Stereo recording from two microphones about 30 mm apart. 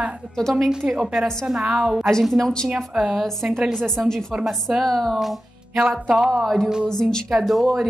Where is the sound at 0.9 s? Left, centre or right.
Centre.